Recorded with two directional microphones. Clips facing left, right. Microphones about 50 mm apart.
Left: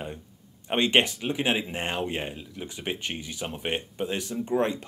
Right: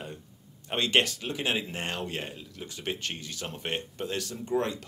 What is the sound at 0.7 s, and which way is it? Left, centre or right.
Speech, left.